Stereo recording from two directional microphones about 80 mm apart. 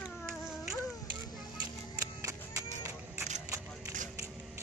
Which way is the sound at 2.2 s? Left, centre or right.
Right.